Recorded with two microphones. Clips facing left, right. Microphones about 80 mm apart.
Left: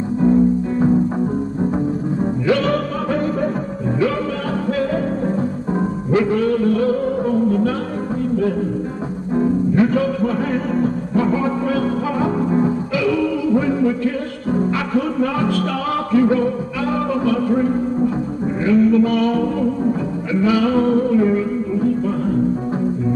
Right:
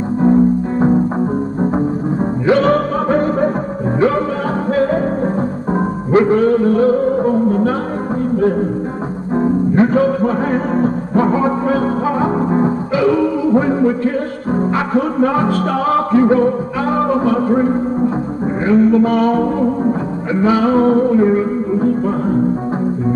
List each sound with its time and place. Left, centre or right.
0.2 s music: right
2.6 s music: right
4.7 s music: right